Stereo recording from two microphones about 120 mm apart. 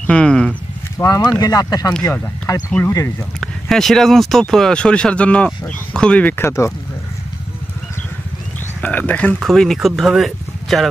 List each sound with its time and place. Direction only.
0.0 s speech: 10° left (ahead or behind)
0.9 s speech: 30° left (ahead or behind)
3.3 s speech: 5° left (ahead or behind); by 6.7 s 20° left (ahead or behind)
8.8 s speech: 15° left (ahead or behind)